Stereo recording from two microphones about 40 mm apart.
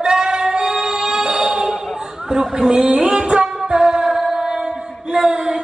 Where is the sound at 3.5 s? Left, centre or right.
Centre.